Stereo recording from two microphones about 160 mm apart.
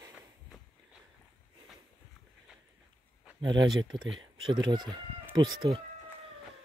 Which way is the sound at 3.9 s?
Centre (ahead or behind).